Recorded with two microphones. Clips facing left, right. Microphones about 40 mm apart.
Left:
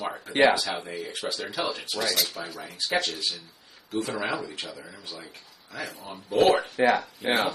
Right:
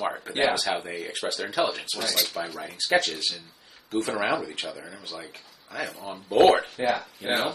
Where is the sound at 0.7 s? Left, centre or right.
Right.